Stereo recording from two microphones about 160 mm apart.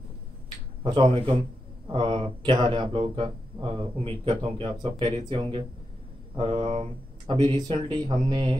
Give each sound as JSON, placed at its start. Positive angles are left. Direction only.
{"t": 0.8, "sound": "speech", "side_deg": -35}